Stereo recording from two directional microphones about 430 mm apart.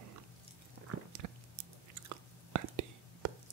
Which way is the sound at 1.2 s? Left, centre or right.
Right.